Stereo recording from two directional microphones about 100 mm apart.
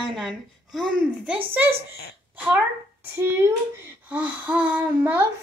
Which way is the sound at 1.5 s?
20° right (ahead or behind).